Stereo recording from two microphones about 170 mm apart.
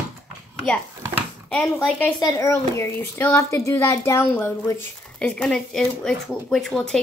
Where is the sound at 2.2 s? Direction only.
20° left (ahead or behind).